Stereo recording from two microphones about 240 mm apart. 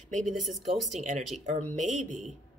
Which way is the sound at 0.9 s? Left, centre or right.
Right.